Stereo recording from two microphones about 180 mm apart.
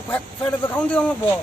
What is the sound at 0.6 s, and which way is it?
Speech, 5° left (ahead or behind).